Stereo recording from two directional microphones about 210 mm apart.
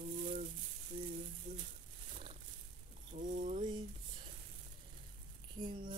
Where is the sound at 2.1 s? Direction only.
25° right (ahead or behind).